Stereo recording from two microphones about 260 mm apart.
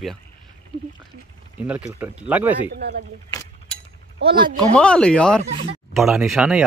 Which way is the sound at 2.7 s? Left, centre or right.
Right.